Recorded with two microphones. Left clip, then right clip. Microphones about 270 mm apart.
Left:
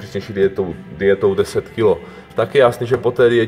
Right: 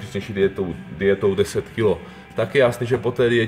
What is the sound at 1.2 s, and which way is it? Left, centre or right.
Speech, centre.